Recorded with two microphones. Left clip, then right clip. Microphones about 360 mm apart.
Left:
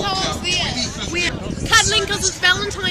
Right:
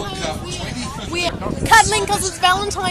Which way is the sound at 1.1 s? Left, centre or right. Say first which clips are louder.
Right 1 dB; centre.